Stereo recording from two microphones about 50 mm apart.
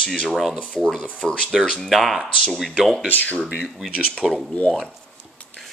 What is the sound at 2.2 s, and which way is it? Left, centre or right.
Speech, centre.